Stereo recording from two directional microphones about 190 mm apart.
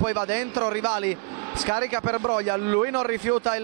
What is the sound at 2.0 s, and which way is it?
Speech, 30° right (ahead or behind).